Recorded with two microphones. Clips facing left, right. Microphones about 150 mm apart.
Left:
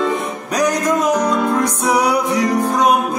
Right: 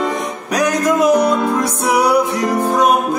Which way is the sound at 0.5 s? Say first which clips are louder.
Right 1 dB; 10° right (ahead or behind).